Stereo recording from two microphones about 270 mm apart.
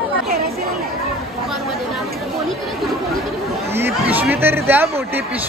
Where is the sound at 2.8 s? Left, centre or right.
Centre.